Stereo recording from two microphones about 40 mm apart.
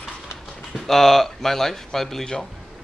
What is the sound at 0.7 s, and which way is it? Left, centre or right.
Speech, centre.